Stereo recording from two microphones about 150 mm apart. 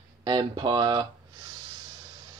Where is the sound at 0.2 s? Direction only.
30° right (ahead or behind).